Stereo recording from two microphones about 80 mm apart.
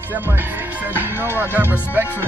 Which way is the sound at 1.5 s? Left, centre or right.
Right.